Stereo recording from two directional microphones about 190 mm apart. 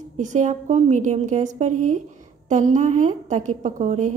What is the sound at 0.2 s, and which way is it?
A woman's voice, 40° right (ahead or behind).